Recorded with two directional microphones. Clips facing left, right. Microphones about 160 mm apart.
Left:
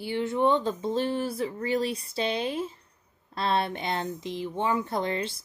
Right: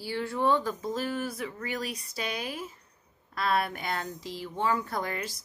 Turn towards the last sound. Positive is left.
turn(degrees=25)  # may be behind; listen again after turning